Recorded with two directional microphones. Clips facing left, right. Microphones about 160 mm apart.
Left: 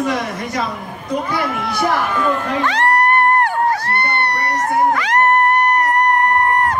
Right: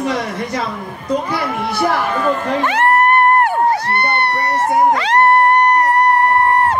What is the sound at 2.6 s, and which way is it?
Music, 25° right (ahead or behind).